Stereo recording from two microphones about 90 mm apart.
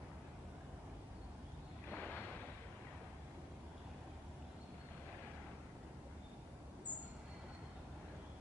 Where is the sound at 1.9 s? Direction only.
15° left (ahead or behind).